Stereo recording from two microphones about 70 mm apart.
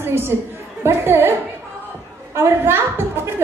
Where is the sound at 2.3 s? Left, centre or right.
Right.